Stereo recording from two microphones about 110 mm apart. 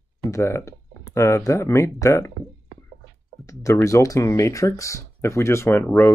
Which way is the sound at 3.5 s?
30° left (ahead or behind).